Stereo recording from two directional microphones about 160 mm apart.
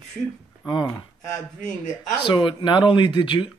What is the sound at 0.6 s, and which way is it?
Speech, 25° left (ahead or behind).